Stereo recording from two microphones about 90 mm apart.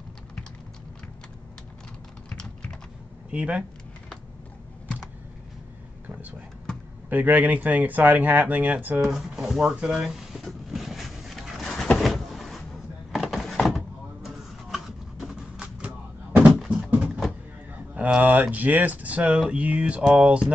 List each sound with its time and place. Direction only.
2.2 s typing: 10° left (ahead or behind)
3.3 s speech: 15° right (ahead or behind)
7.1 s speech: 20° right (ahead or behind)
9.0 s speech: 5° right (ahead or behind)
9.8 s a sound: 5° right (ahead or behind)
13.1 s door: centre (ahead or behind)
16.9 s a sound: 15° right (ahead or behind)
17.9 s speech: 15° right (ahead or behind)